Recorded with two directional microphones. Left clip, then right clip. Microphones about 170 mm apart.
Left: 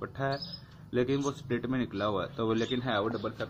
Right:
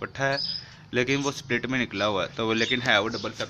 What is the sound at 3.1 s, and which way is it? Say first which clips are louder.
Speech: right 4 dB; 40° right (ahead or behind).